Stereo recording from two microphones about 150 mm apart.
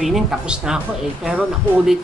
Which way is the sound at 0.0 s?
5° right (ahead or behind).